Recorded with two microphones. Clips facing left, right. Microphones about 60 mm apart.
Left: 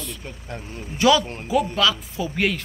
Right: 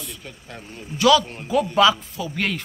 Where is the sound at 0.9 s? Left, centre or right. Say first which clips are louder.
Right 1 dB; left.